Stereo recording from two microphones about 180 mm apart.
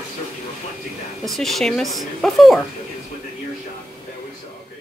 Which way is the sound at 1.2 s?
Centre (ahead or behind).